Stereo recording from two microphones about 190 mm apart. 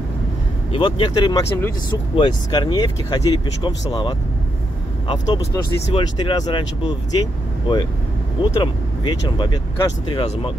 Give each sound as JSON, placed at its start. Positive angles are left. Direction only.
{"t": 0.7, "sound": "speech", "side_deg": 25}